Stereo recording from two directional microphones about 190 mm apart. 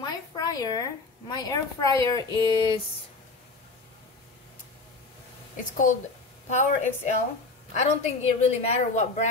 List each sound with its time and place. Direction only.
0.0 s a woman's voice: 20° left (ahead or behind)
6.5 s a woman's voice: 40° left (ahead or behind)